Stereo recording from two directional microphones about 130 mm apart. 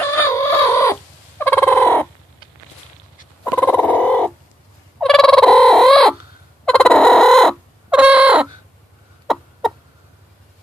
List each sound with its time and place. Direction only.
0.0 s fowl: 20° left (ahead or behind)
3.4 s fowl: 15° left (ahead or behind)
6.6 s chicken: 5° left (ahead or behind)